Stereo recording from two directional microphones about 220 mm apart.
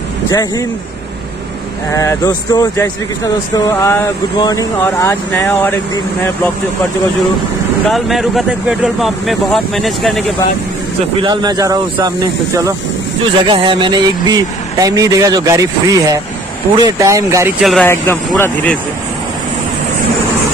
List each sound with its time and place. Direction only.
0.3 s speech: 15° left (ahead or behind)
1.9 s speech: 15° left (ahead or behind)
7.9 s speech: centre (ahead or behind)
11.2 s speech: 20° right (ahead or behind)
13.5 s speech: 20° right (ahead or behind)
17.6 s speech: centre (ahead or behind)